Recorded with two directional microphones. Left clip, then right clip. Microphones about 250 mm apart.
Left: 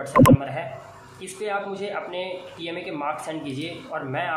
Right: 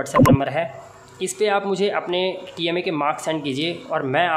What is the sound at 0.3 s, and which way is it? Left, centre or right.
Speech, right.